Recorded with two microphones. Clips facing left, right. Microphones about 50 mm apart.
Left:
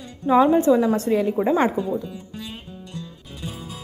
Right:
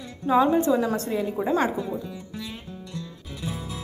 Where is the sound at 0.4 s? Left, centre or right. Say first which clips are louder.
Left 4 dB; left.